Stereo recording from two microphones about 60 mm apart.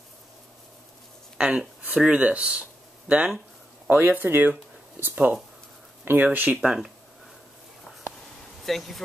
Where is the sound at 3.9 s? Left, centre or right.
Right.